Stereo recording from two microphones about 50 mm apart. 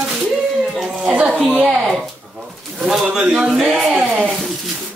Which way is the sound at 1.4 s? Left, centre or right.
Centre.